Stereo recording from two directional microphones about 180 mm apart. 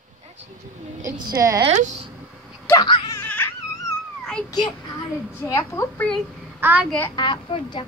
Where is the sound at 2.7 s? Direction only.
25° left (ahead or behind).